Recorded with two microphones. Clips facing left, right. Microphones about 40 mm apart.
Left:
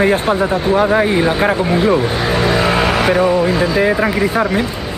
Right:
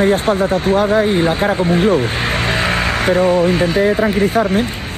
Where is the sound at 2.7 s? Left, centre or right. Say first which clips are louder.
Left 2 dB; left.